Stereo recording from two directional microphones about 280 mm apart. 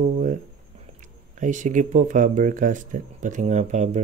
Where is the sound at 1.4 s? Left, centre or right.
Right.